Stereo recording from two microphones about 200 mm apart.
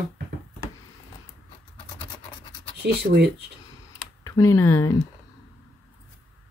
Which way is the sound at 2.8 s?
55° right (ahead or behind).